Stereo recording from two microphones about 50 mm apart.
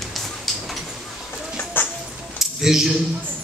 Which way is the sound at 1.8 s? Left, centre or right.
Left.